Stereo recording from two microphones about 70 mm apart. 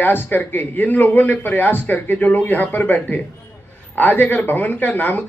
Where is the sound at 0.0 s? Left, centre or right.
Left.